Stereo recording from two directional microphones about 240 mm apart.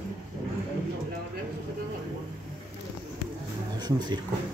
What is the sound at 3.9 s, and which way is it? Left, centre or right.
Speech, centre.